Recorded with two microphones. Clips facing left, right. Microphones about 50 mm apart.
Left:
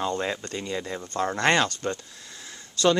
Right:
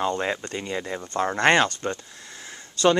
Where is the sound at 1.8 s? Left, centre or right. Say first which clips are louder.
Right 1 dB; centre.